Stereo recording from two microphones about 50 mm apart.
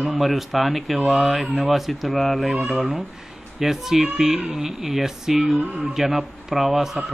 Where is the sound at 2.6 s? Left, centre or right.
Centre.